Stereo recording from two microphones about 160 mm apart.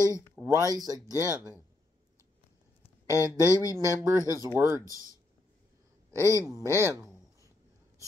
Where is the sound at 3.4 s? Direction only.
20° left (ahead or behind).